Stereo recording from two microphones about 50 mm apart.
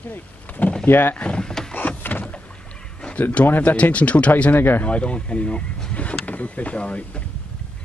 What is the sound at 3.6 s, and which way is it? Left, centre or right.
Speech, left.